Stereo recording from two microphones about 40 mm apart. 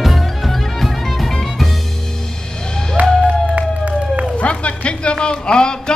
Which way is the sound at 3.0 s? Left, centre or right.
Right.